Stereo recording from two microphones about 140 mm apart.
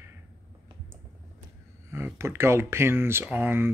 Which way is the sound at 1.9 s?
20° right (ahead or behind).